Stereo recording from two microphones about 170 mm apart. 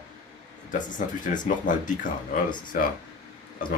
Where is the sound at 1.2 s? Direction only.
50° left (ahead or behind).